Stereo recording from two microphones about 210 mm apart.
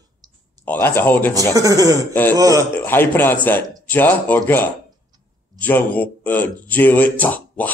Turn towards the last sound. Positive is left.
turn(degrees=5)  # may be behind; listen again after turning